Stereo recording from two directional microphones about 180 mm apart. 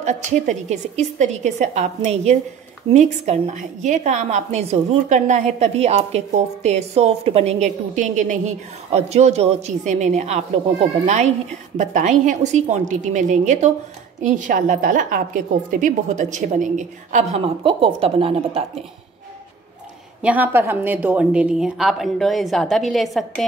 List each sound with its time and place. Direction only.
0.5 s a woman's voice: 40° right (ahead or behind)
20.2 s a woman's voice: 10° right (ahead or behind)